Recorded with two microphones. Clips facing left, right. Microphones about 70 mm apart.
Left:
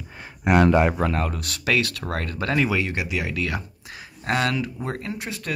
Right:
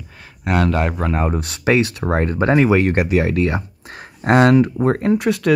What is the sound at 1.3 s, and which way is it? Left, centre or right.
Speech, right.